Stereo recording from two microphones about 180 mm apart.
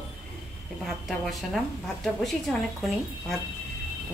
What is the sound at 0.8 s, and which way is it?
A woman's voice, centre (ahead or behind).